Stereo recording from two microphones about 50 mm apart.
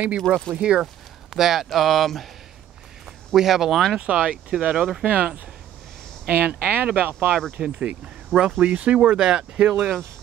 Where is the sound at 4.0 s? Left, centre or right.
Right.